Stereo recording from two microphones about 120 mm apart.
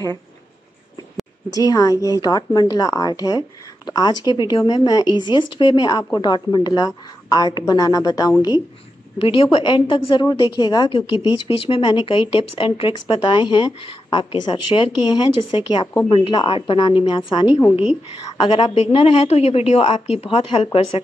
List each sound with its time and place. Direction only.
1.5 s speech: 30° left (ahead or behind)
9.2 s a woman's voice: 45° left (ahead or behind)
10.9 s a woman's voice: 45° left (ahead or behind)
11.8 s a woman's voice: 40° left (ahead or behind)
18.8 s a woman's voice: 55° left (ahead or behind)